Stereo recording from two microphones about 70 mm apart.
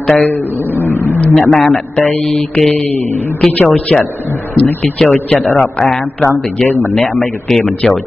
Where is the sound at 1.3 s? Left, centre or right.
Centre.